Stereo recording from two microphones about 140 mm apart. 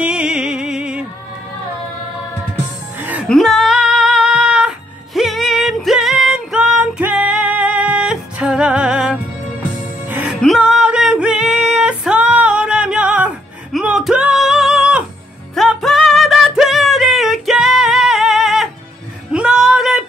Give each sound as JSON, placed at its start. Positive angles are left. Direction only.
{"t": 0.0, "sound": "music", "side_deg": -5}
{"t": 3.0, "sound": "music", "side_deg": -10}
{"t": 3.3, "sound": "music", "side_deg": 0}
{"t": 19.3, "sound": "a sound", "side_deg": -5}